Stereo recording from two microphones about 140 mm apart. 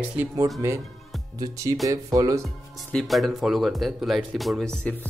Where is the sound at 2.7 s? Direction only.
Centre (ahead or behind).